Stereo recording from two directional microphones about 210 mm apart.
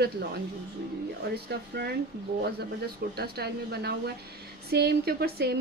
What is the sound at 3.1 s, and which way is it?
A woman's voice, 50° right (ahead or behind).